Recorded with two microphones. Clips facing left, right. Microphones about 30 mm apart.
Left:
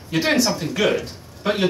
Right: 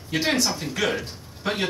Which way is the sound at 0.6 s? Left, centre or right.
Centre.